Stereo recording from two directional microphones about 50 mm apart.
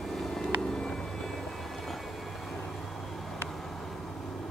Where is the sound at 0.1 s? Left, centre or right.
Centre.